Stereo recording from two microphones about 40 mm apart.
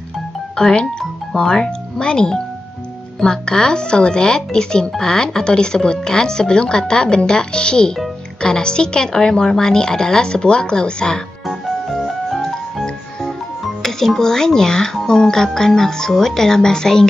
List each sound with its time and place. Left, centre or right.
0.6 s a woman's voice: left
11.4 s music: centre
13.8 s speech: centre